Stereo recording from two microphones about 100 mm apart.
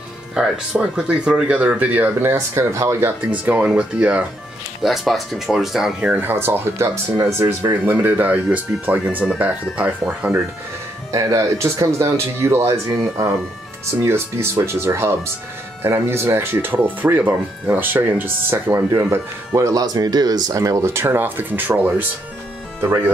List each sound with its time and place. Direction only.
0.3 s speech: 10° right (ahead or behind)
11.1 s speech: 35° right (ahead or behind)
14.0 s speech: 25° right (ahead or behind)